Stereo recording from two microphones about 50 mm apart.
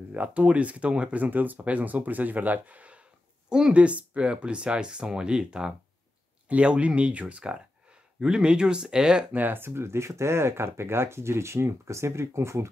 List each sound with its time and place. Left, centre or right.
0.1 s speech: right
1.2 s speech: right
3.4 s speech: centre
8.2 s speech: centre
9.3 s speech: right